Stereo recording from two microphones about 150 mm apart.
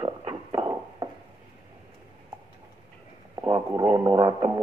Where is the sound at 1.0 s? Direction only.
30° right (ahead or behind).